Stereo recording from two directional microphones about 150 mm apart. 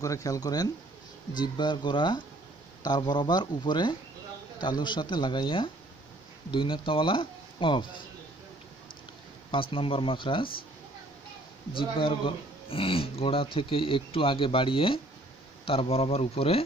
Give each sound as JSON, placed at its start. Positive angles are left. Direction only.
{"t": 0.0, "sound": "speech", "side_deg": 20}
{"t": 9.5, "sound": "speech", "side_deg": 35}
{"t": 11.7, "sound": "speech", "side_deg": 35}